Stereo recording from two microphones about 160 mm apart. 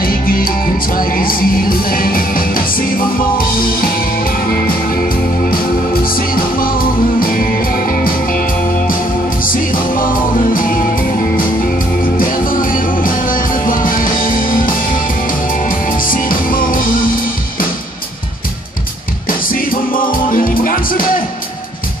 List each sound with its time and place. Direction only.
0.0 s music: 65° left (ahead or behind)
12.0 s music: 60° left (ahead or behind)
15.7 s music: 60° left (ahead or behind)
19.2 s music: 60° left (ahead or behind)